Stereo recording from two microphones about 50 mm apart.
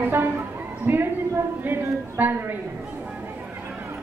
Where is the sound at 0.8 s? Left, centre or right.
Right.